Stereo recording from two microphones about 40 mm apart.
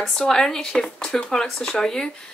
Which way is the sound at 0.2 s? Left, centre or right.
Centre.